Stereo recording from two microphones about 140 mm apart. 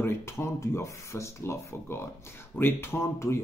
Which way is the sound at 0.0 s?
20° left (ahead or behind).